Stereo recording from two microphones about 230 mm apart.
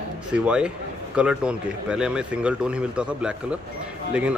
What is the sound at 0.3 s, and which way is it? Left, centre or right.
Speech, centre.